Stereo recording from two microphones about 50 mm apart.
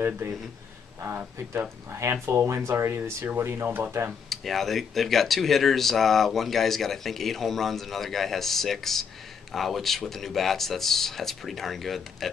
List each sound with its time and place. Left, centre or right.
0.2 s speech: right
1.9 s speech: right
2.2 s speech: right
2.6 s speech: right
3.3 s speech: right
3.6 s speech: right
4.3 s speech: centre